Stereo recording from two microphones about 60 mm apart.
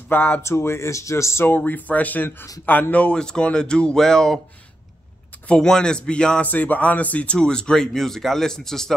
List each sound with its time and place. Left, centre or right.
0.1 s speech: left
0.4 s speech: left
1.4 s speech: left; by 4.4 s centre
5.7 s speech: centre
6.4 s speech: left; by 8.9 s centre